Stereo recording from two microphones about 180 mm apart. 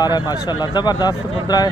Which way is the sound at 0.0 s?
20° left (ahead or behind).